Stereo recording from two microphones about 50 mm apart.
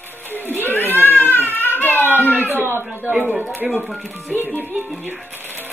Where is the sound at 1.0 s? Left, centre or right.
Left.